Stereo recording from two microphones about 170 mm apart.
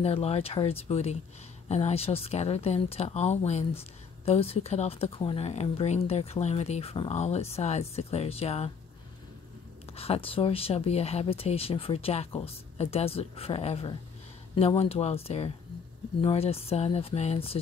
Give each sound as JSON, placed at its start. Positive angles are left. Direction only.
{"t": 0.0, "sound": "speech", "side_deg": 35}
{"t": 9.9, "sound": "speech", "side_deg": 35}